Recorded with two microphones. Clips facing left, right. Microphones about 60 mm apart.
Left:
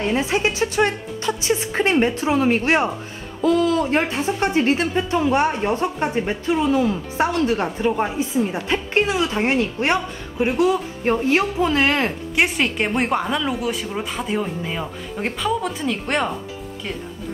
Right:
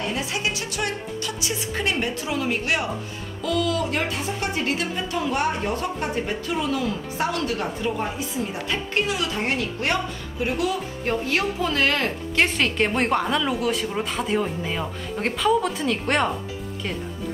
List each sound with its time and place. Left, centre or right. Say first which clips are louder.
0.0 s a woman's voice: left 6 dB; left
12.4 s speech: left 1 dB; centre